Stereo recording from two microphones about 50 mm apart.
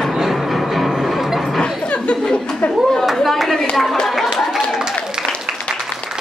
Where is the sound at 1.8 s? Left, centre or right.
Left.